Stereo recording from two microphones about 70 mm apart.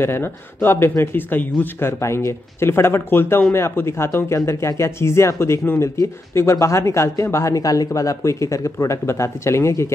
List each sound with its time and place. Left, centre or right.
0.0 s speech: left
1.1 s speech: left
7.5 s speech: left